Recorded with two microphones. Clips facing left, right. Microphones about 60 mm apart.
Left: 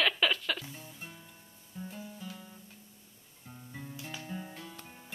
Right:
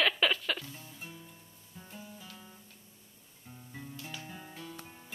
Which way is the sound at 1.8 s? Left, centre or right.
Centre.